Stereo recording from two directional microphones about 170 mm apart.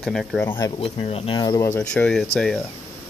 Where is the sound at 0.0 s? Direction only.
Centre (ahead or behind).